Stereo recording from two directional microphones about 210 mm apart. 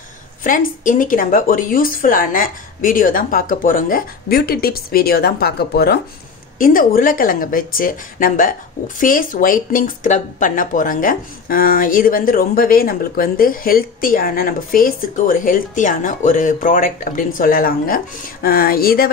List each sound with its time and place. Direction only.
0.4 s a woman's voice: 40° left (ahead or behind)